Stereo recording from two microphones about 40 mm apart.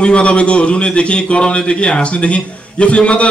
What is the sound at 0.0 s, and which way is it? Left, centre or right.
A man's voice, left.